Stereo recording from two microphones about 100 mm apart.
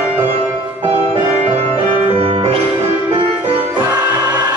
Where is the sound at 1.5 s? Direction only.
80° right.